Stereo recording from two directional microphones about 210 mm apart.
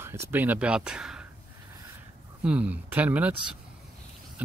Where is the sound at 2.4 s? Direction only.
5° right (ahead or behind).